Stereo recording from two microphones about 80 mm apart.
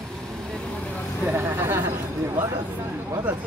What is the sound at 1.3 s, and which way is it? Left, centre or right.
Speech, right.